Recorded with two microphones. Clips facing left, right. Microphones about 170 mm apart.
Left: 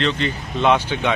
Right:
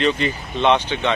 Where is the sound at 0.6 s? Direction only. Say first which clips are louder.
Even; 5° left (ahead or behind).